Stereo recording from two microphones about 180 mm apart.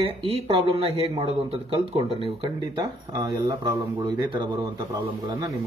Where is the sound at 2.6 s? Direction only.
20° right (ahead or behind).